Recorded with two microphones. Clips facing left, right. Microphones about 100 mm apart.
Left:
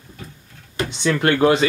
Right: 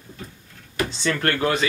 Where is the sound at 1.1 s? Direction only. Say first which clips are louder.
Left 8 dB; 20° left (ahead or behind).